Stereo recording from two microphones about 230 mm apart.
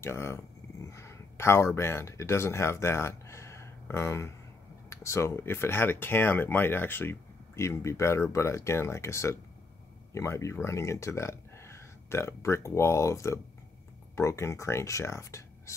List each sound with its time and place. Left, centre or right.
0.0 s speech: centre